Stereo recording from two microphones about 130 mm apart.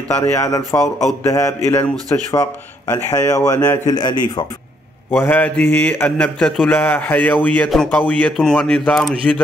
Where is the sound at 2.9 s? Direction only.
25° left (ahead or behind).